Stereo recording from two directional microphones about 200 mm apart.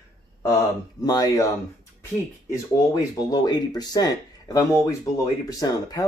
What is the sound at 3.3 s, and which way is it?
Speech, 20° left (ahead or behind).